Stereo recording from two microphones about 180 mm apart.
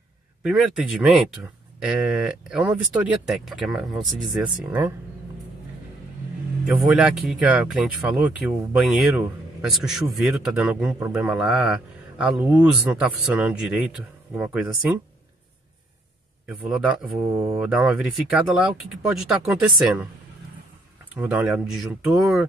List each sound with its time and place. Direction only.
0.4 s speech: 5° right (ahead or behind)
6.6 s a man's voice: centre (ahead or behind)
16.4 s speech: 5° right (ahead or behind)
16.9 s speech: 20° right (ahead or behind)
17.6 s speech: 5° right (ahead or behind)
21.1 s speech: 10° right (ahead or behind)